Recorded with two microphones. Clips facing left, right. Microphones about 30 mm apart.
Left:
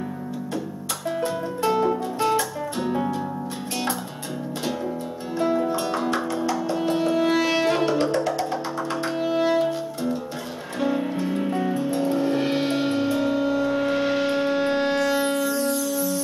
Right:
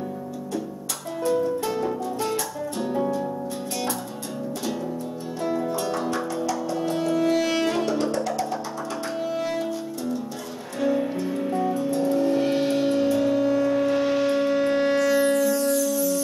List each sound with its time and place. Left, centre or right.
1.2 s music: left
5.4 s music: left
9.3 s music: left